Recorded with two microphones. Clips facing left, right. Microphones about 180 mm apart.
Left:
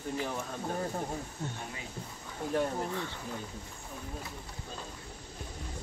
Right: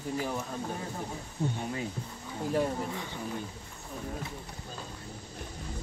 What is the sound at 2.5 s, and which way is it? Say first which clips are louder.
Speech: right 1 dB; 10° right (ahead or behind).